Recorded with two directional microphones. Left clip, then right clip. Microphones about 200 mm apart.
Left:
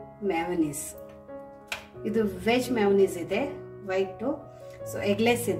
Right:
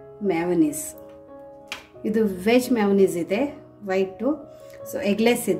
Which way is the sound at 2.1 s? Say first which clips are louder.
Right 5 dB; 45° right (ahead or behind).